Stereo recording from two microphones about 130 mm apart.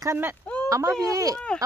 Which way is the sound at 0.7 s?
25° right (ahead or behind).